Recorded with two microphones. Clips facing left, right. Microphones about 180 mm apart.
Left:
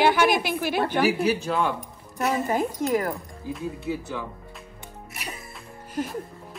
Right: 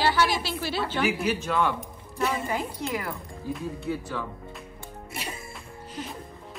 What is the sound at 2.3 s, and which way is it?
Speech, 45° left (ahead or behind).